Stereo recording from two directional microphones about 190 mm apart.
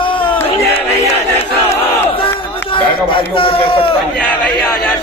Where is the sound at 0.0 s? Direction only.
25° left (ahead or behind).